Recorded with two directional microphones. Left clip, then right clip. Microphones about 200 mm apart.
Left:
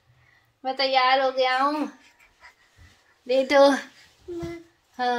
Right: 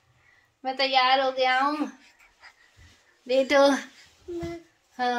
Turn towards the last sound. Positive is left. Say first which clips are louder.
# left 1 dB
turn(degrees=20)  # may be behind; listen again after turning